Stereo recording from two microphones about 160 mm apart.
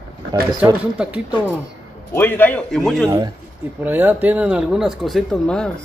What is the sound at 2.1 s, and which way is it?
Speech, 15° left (ahead or behind).